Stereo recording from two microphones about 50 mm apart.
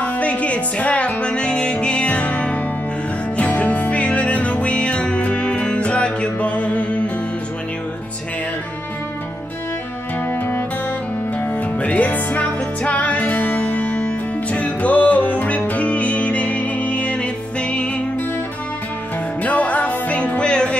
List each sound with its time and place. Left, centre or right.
0.0 s music: left
10.2 s music: left
11.5 s music: left
19.4 s music: left